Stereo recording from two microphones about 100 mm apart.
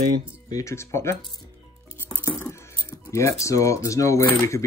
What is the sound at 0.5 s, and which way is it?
Speech, 35° left (ahead or behind).